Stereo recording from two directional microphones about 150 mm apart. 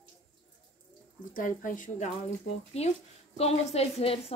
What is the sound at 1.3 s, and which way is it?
Speech, 65° left (ahead or behind).